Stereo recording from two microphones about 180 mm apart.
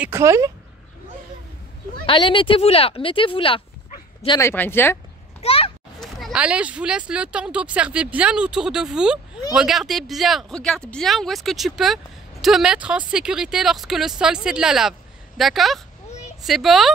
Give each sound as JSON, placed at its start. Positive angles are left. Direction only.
{"t": 0.0, "sound": "speech", "side_deg": -15}
{"t": 2.0, "sound": "speech", "side_deg": 30}
{"t": 4.4, "sound": "speech", "side_deg": 15}
{"t": 5.4, "sound": "a sound", "side_deg": 30}
{"t": 5.9, "sound": "speech", "side_deg": 0}
{"t": 16.1, "sound": "a sound", "side_deg": 40}
{"t": 16.4, "sound": "speech", "side_deg": 0}